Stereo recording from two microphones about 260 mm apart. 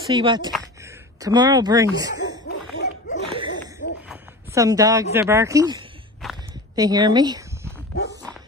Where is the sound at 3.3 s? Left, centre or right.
Centre.